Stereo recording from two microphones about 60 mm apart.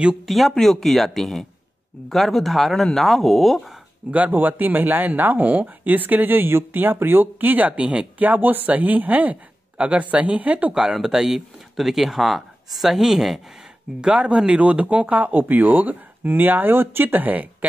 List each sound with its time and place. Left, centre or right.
0.3 s speech: centre
4.1 s speech: right
10.7 s speech: centre; by 17.6 s right